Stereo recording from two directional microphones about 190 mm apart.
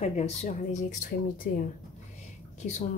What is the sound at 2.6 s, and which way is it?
Speech, 45° left (ahead or behind).